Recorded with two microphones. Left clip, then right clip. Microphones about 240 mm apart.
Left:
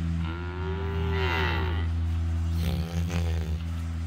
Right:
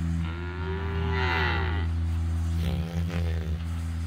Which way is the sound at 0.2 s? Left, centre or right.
Left.